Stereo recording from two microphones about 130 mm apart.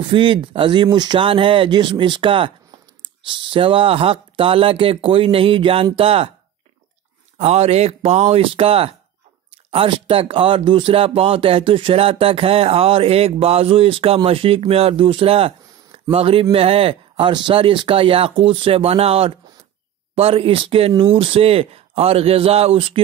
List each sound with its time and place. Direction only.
0.1 s speech: 40° right (ahead or behind)
7.3 s speech: 55° right (ahead or behind)